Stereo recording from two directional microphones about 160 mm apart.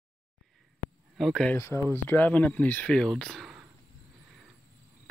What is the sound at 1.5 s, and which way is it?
Speech, 15° left (ahead or behind).